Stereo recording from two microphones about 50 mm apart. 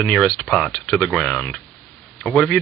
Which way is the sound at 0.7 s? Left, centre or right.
Left.